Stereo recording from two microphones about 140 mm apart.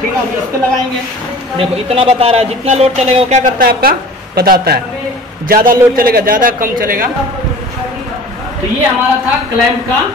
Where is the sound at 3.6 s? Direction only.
90° right.